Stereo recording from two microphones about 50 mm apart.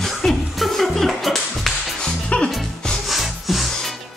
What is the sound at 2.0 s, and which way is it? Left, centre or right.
Music, centre.